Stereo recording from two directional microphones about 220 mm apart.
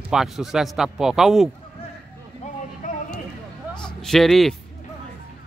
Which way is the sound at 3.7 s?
Centre (ahead or behind).